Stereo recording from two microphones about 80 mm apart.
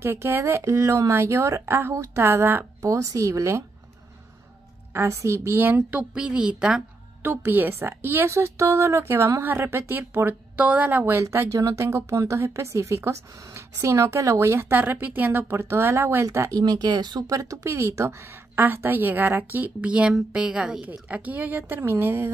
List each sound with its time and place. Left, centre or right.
0.0 s speech: right
2.8 s speech: right
4.9 s speech: right
5.7 s speech: right
7.2 s speech: right
11.2 s speech: right
16.6 s speech: right